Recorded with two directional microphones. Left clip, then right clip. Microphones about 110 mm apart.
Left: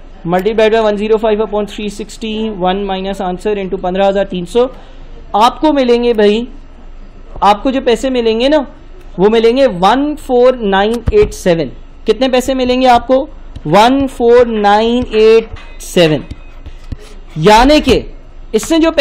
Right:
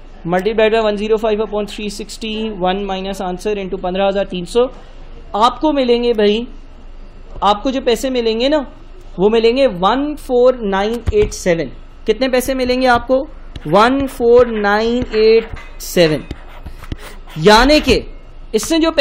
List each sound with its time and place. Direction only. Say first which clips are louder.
0.3 s speech: left 3 dB; 15° left (ahead or behind)
5.8 s speech: left 4 dB; 10° left (ahead or behind)
7.3 s speech: left 5 dB; 15° left (ahead or behind)
10.5 s speech: left 5 dB; 30° left (ahead or behind)
17.4 s speech: left 3 dB; 25° left (ahead or behind)